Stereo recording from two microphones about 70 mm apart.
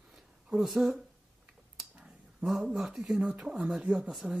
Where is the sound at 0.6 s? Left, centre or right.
Centre.